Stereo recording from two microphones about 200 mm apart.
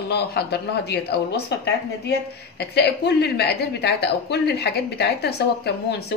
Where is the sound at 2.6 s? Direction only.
55° left (ahead or behind).